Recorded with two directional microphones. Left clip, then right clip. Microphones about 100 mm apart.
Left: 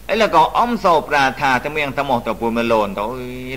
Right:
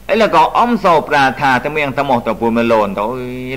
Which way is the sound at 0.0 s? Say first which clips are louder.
Right 3 dB; 30° left (ahead or behind).